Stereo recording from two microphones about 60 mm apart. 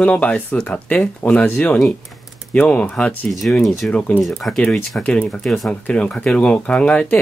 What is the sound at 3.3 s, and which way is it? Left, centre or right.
Speech, centre.